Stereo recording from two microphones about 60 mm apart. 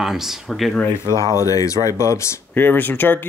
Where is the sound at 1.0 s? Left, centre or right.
Left.